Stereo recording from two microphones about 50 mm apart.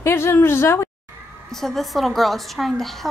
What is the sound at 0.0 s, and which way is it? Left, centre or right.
Speech, left.